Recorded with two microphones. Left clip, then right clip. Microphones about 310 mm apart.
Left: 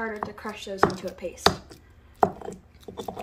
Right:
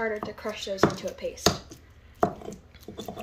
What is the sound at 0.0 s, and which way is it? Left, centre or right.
Speech, centre.